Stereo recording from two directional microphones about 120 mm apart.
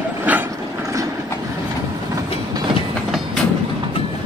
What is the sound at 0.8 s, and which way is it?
Vehicle, 25° right (ahead or behind).